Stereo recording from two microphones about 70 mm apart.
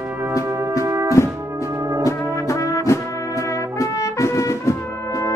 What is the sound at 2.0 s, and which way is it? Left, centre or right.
Brass instrument, left.